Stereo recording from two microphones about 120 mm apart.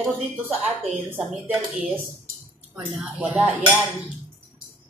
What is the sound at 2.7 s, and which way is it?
Speech, 5° right (ahead or behind).